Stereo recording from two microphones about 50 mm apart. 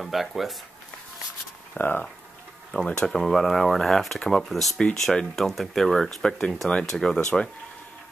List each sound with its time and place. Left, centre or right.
0.0 s speech: centre
1.7 s speech: left
2.7 s speech: centre